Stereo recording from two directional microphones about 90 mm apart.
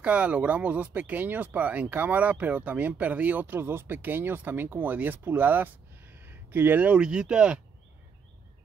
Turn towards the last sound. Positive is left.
turn(degrees=-10)  # may be behind; listen again after turning